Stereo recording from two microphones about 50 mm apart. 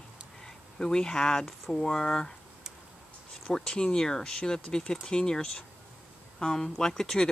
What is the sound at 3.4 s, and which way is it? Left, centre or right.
Speech, centre.